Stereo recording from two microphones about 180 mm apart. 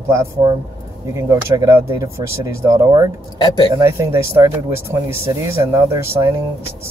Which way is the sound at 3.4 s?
25° left (ahead or behind).